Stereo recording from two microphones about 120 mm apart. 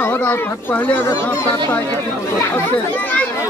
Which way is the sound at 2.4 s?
15° left (ahead or behind).